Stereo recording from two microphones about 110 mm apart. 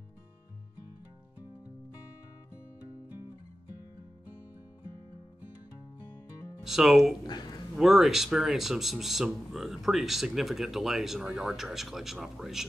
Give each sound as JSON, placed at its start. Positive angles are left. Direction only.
{"t": 6.6, "sound": "a man's voice", "side_deg": -5}
{"t": 7.2, "sound": "a sound", "side_deg": 40}
{"t": 7.7, "sound": "a man's voice", "side_deg": -5}